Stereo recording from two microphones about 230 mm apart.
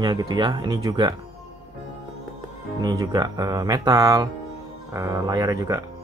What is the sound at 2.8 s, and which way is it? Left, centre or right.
Speech, centre.